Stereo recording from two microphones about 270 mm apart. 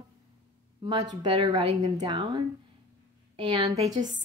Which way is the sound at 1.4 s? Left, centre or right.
Right.